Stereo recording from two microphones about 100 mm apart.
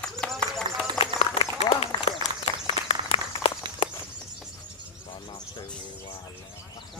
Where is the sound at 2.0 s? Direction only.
70° left (ahead or behind).